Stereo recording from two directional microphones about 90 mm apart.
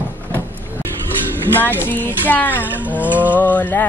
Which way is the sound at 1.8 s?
20° left (ahead or behind).